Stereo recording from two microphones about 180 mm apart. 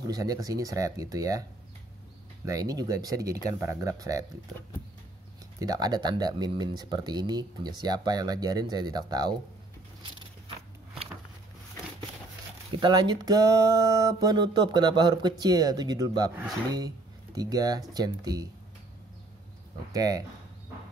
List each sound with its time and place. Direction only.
0.0 s speech: 20° right (ahead or behind)
2.4 s speech: 20° right (ahead or behind)
5.6 s speech: 20° right (ahead or behind)
12.7 s speech: 25° right (ahead or behind)
17.4 s speech: 20° right (ahead or behind)
19.9 s speech: 20° right (ahead or behind)